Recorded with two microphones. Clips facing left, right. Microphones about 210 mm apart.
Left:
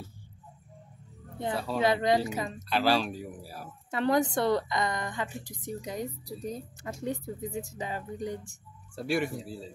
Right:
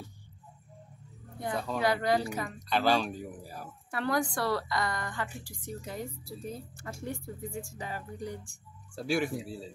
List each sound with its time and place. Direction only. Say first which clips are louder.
1.5 s speech: left 1 dB; 5° left (ahead or behind)
1.8 s a woman's voice: left 3 dB; 20° left (ahead or behind)
2.7 s speech: left 1 dB; 5° left (ahead or behind)
3.9 s a woman's voice: left 5 dB; 20° left (ahead or behind)
8.9 s speech: left 1 dB; centre (ahead or behind)